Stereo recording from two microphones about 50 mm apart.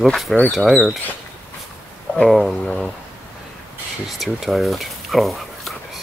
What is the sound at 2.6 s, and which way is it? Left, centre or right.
Speech, centre.